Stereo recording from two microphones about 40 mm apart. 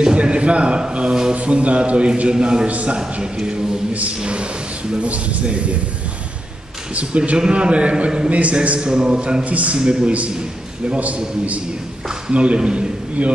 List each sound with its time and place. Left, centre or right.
0.0 s a sound: right
1.3 s a man's voice: right
2.6 s speech: right
3.0 s a man's voice: centre
7.0 s speech: right
7.3 s a man's voice: right
8.8 s a man's voice: right
9.4 s speech: right
9.8 s a man's voice: right
11.1 s a man's voice: right